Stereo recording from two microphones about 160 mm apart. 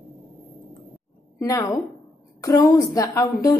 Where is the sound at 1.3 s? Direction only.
20° left (ahead or behind).